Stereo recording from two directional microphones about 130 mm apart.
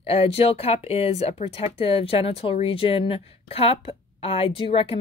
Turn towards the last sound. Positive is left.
turn(degrees=45)  # may be behind; listen again after turning